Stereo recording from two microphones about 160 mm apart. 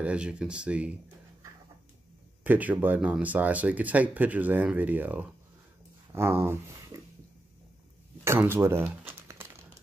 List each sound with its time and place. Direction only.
0.0 s speech: 5° right (ahead or behind)
2.4 s speech: 10° right (ahead or behind)
8.2 s crumpling: 15° right (ahead or behind)